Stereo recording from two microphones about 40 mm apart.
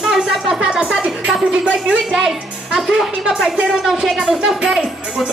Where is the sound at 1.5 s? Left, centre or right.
Right.